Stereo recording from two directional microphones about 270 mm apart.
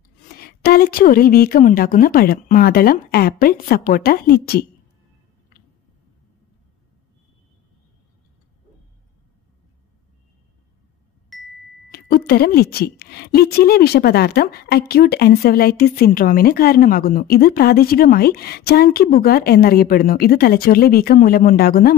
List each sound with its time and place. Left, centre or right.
0.7 s a woman's voice: left
11.3 s ding: centre
12.3 s a woman's voice: left